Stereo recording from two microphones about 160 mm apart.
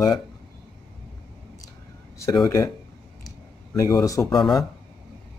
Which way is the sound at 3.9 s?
20° left (ahead or behind).